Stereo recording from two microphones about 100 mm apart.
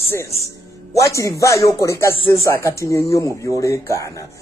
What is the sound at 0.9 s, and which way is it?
A man's voice, 30° left (ahead or behind).